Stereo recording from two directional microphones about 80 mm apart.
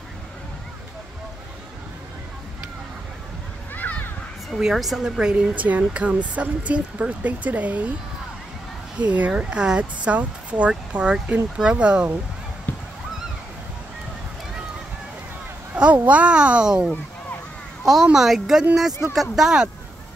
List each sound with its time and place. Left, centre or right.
3.7 s a sound: left
4.6 s speech: centre
8.9 s speech: centre
12.7 s goose: left
15.7 s speech: centre